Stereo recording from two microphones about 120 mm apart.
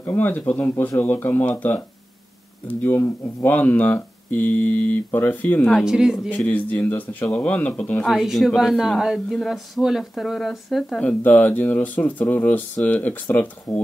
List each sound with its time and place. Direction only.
0.0 s speech: 15° left (ahead or behind)
5.7 s speech: centre (ahead or behind)
6.3 s speech: 15° left (ahead or behind)
8.1 s speech: centre (ahead or behind)